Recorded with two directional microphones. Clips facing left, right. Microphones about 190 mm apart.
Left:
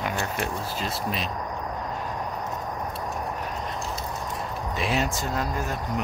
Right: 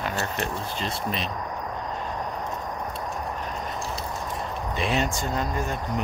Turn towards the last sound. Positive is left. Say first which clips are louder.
# right 1 dB
turn(degrees=0)  # may be behind; listen again after turning